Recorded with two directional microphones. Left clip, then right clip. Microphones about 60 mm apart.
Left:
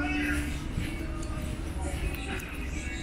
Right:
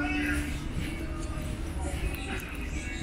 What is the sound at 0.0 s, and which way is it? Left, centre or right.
Music, centre.